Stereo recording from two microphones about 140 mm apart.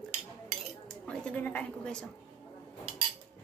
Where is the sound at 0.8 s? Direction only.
5° left (ahead or behind).